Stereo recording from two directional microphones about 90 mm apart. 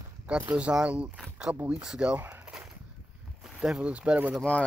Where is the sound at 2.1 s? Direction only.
20° right (ahead or behind).